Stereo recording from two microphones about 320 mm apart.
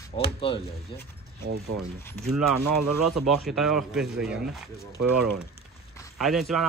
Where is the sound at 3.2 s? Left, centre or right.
Centre.